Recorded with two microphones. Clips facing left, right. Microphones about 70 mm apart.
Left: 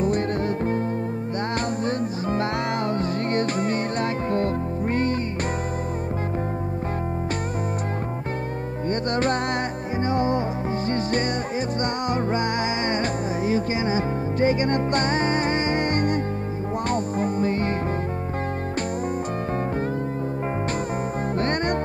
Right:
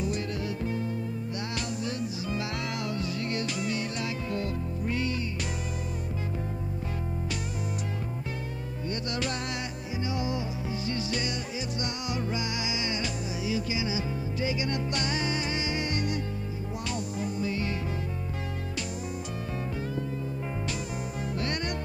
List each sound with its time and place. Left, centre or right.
1.9 s music: left
8.8 s music: left
21.4 s music: left